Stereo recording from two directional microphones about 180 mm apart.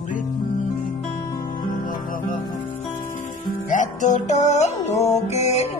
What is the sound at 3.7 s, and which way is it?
Music, 45° left (ahead or behind).